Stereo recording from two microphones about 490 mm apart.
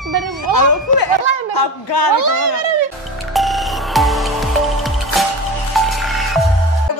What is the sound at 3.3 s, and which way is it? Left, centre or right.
Music, centre.